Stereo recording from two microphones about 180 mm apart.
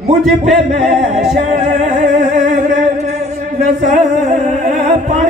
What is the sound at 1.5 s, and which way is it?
Music, 40° right (ahead or behind).